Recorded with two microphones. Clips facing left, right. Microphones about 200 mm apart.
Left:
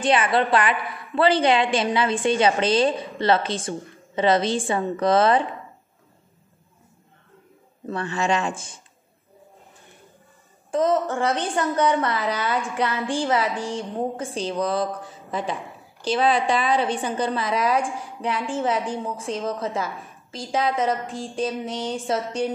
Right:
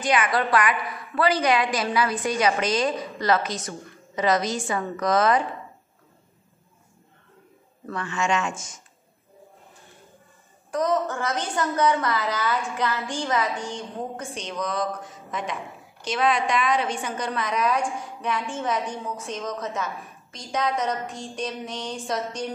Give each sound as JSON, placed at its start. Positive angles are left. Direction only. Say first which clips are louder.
{"t": 0.0, "sound": "a woman's voice", "louder": "left 3 dB", "side_deg": 30}
{"t": 8.0, "sound": "a woman's voice", "louder": "left 2 dB", "side_deg": 35}
{"t": 10.7, "sound": "a woman's voice", "louder": "left 3 dB", "side_deg": 25}